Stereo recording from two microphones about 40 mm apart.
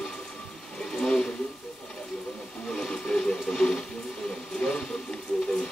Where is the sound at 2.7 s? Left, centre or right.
Centre.